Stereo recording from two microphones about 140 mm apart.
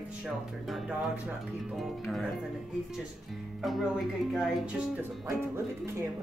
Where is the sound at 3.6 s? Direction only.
Centre (ahead or behind).